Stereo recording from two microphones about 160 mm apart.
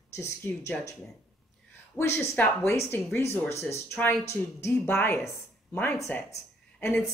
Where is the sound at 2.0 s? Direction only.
15° left (ahead or behind).